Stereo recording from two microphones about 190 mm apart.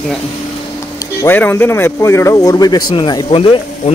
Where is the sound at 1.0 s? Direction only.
15° left (ahead or behind).